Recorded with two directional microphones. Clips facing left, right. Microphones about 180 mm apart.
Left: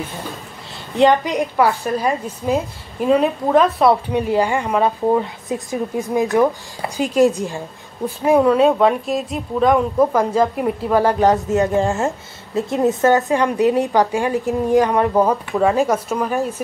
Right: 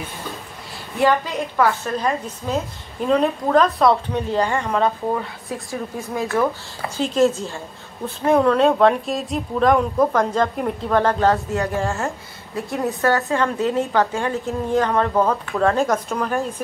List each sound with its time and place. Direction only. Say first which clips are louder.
0.9 s a woman's voice: left 4 dB; 20° left (ahead or behind)